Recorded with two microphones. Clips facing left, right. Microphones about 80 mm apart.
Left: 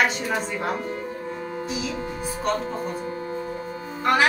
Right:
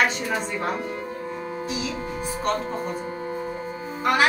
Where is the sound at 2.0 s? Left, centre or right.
Right.